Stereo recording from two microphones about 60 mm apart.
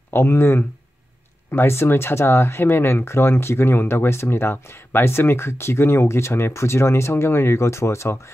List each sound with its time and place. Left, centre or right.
0.1 s speech: left